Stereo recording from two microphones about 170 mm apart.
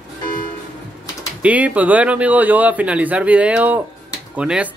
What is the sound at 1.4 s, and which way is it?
Speech, 10° right (ahead or behind).